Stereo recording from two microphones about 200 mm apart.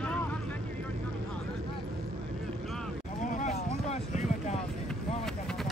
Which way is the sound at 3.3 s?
35° left (ahead or behind).